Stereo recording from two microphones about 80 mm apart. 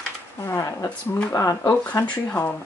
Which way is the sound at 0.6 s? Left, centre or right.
Left.